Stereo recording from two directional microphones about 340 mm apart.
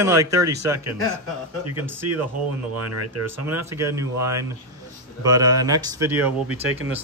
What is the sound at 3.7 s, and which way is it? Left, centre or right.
Speech, centre.